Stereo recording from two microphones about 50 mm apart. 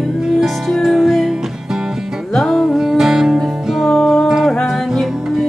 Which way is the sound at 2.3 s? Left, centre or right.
Centre.